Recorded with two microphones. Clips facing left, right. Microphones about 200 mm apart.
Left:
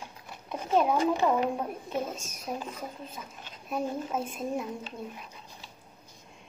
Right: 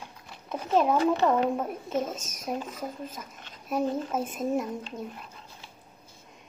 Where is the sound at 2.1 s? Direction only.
40° right (ahead or behind).